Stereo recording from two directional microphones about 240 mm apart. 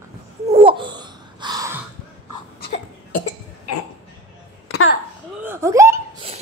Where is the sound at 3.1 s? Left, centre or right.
Left.